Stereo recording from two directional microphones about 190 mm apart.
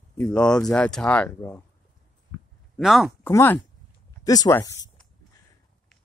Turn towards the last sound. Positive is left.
turn(degrees=20)  # may be behind; listen again after turning